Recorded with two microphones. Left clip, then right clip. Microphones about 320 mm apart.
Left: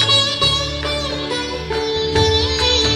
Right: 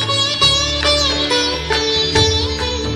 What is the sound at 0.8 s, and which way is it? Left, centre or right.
Music, right.